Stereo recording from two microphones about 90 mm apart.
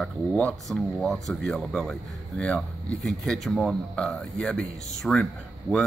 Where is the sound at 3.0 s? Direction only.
5° left (ahead or behind).